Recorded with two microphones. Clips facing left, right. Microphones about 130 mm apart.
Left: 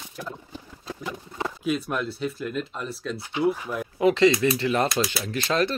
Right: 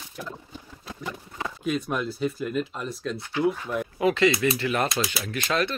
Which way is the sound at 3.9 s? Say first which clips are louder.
Left 3 dB; 25° left (ahead or behind).